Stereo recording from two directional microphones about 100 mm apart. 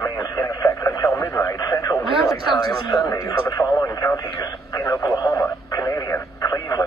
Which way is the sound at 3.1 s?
35° left (ahead or behind).